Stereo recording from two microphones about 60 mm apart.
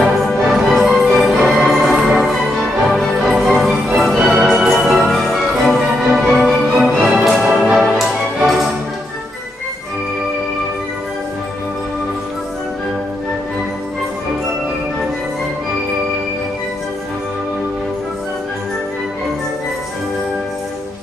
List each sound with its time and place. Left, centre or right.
0.5 s music: centre
6.7 s music: centre
7.1 s music: centre